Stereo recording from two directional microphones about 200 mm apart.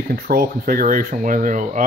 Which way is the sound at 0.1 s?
50° right (ahead or behind).